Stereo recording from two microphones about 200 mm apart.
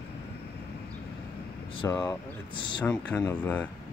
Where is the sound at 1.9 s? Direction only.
15° left (ahead or behind).